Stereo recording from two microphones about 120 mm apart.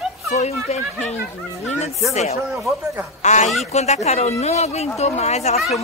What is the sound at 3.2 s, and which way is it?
Speech, 80° left.